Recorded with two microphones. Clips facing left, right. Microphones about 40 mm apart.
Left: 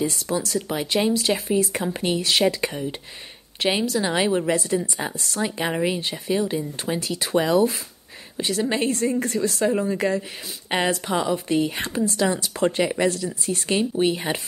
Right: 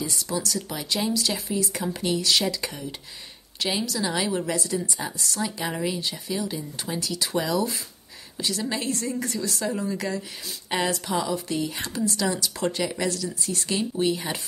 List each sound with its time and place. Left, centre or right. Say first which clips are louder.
0.0 s a woman's voice: left 4 dB; left